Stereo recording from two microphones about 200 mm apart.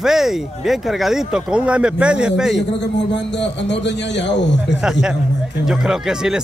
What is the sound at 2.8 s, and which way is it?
A man's voice, 60° left (ahead or behind).